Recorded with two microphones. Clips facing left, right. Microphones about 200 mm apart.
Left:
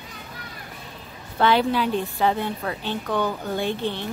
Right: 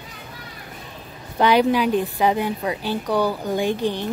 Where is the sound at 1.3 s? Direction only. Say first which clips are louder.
Right 3 dB; 15° right (ahead or behind).